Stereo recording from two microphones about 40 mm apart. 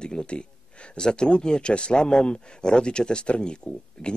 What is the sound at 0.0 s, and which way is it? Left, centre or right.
Speech, left.